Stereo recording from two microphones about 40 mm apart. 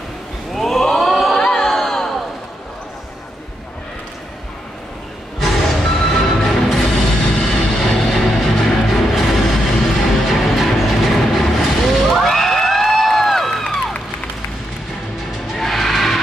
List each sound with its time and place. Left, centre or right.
0.5 s a sound: centre
1.4 s music: centre
1.7 s a sound: centre
5.4 s music: centre
12.3 s crowd: centre
15.4 s music: centre